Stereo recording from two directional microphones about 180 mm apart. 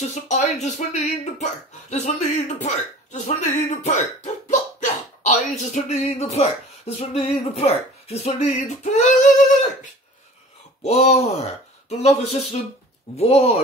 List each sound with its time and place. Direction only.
0.1 s speech: 40° left (ahead or behind)
8.9 s female singing: 45° left (ahead or behind)
10.8 s speech: 35° left (ahead or behind)